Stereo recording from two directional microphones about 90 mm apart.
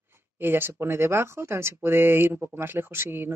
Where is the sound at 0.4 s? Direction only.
25° right (ahead or behind).